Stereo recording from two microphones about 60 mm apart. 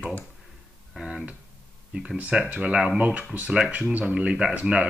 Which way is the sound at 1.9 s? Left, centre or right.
Right.